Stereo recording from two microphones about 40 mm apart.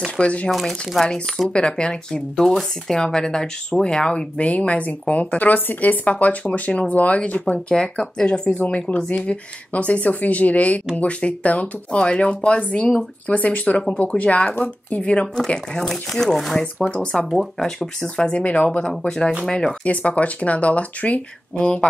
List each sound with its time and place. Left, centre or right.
0.2 s speech: left
0.5 s speech: centre
1.5 s speech: left
2.1 s speech: centre
4.4 s speech: left
5.5 s speech: left; by 9.1 s centre
9.1 s speech: left
15.9 s speech: centre
16.8 s speech: centre
19.8 s speech: left